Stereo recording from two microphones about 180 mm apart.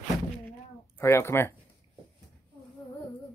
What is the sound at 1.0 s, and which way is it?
Speech, 15° left (ahead or behind).